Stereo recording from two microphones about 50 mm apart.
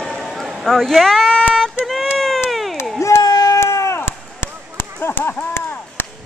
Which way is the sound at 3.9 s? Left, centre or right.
Left.